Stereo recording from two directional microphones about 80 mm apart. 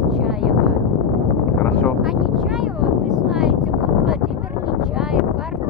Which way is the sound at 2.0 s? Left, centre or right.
Centre.